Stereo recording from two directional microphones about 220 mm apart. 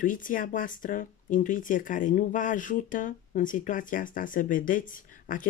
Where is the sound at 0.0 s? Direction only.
35° left (ahead or behind).